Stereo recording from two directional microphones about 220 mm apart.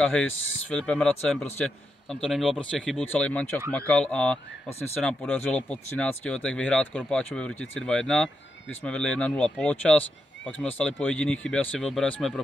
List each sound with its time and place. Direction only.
0.0 s speech: 5° left (ahead or behind)
0.3 s speech: 60° left (ahead or behind)
0.7 s speech: 5° left (ahead or behind)